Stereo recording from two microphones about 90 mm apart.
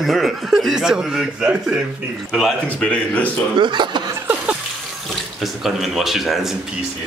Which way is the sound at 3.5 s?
60° right (ahead or behind).